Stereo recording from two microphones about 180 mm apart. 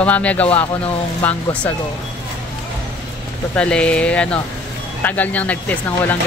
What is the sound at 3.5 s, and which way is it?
Speech, 5° left (ahead or behind).